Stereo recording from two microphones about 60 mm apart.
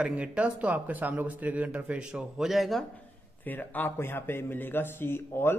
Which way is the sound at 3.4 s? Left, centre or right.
Left.